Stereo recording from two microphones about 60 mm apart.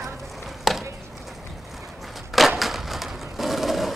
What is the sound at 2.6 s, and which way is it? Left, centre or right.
Crushing, centre.